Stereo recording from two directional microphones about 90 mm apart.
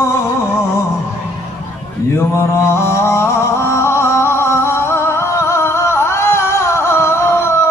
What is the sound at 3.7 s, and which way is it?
Music, 30° left (ahead or behind).